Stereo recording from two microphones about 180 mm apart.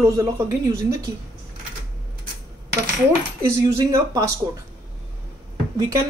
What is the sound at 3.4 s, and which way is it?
Speech, 15° right (ahead or behind).